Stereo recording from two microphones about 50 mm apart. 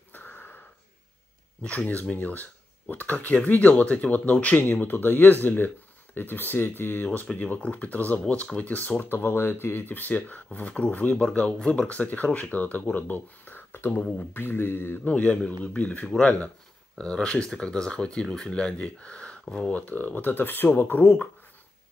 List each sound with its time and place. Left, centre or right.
0.1 s a sound: left
1.9 s speech: left
4.6 s speech: left
9.0 s speech: left
15.0 s speech: left
17.0 s speech: centre
18.5 s speech: left
19.7 s speech: left